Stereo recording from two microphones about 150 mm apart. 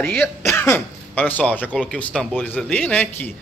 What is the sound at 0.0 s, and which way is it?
Speech, 5° left (ahead or behind).